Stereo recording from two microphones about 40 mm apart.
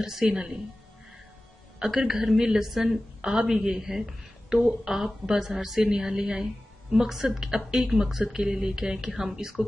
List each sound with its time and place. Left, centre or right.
0.0 s a woman's voice: centre
1.8 s a woman's voice: centre
3.2 s a woman's voice: centre
5.9 s a woman's voice: centre